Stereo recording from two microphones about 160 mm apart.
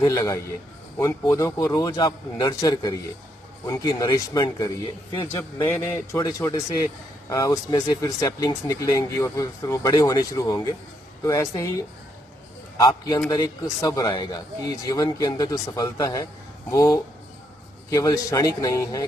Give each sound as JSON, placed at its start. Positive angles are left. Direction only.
{"t": 0.0, "sound": "a man's voice", "side_deg": 20}
{"t": 5.7, "sound": "a man's voice", "side_deg": 20}